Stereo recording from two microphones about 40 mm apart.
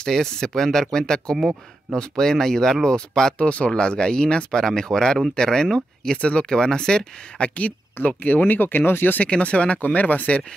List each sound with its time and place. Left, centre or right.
0.0 s speech: centre
3.3 s speech: left
8.2 s speech: left
9.2 s speech: left